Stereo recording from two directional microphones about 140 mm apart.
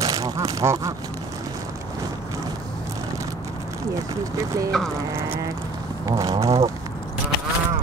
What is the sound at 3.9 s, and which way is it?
Speech, 25° right (ahead or behind).